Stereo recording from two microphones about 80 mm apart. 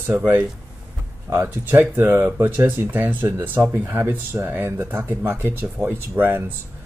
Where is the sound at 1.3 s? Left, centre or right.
Right.